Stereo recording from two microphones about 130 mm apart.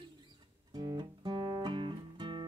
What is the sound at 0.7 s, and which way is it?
Music, 35° right (ahead or behind).